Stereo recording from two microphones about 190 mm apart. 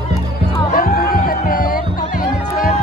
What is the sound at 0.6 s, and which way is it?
Music, 50° left (ahead or behind).